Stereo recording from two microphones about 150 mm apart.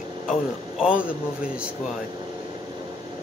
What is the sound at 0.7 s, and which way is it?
Speech, 5° right (ahead or behind).